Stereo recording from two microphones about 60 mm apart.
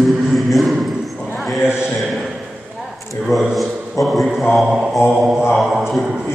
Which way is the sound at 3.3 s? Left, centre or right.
Left.